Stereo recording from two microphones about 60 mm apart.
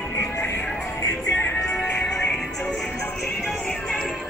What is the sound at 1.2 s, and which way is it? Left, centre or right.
Music, centre.